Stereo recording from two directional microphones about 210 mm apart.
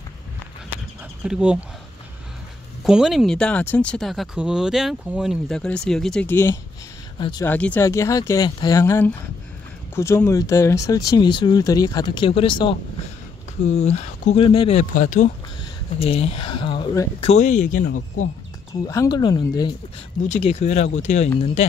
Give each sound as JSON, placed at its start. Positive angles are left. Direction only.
{"t": 1.2, "sound": "speech", "side_deg": -5}
{"t": 2.8, "sound": "speech", "side_deg": 0}
{"t": 7.2, "sound": "speech", "side_deg": 20}
{"t": 7.4, "sound": "speech", "side_deg": 10}
{"t": 17.2, "sound": "speech", "side_deg": 30}
{"t": 18.9, "sound": "speech", "side_deg": 20}
{"t": 20.2, "sound": "speech", "side_deg": 30}